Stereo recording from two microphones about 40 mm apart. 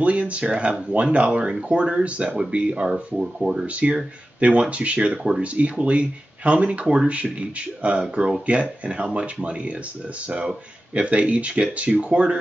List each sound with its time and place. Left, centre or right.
0.0 s speech: right
2.9 s speech: centre
3.6 s speech: right